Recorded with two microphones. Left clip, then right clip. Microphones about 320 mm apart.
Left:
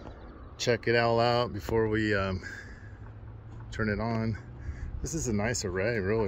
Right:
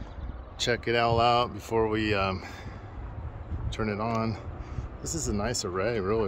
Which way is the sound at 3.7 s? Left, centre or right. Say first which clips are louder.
Right 2 dB; centre.